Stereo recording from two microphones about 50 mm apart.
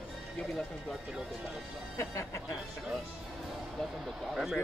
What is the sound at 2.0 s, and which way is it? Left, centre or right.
Music, left.